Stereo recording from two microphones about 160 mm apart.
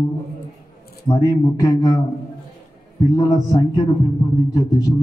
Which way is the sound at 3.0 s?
25° left (ahead or behind).